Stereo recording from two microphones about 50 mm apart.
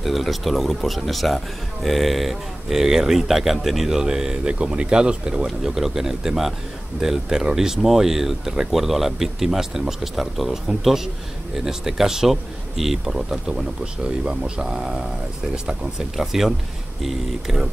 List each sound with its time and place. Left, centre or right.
0.0 s speech: centre
5.6 s speech: centre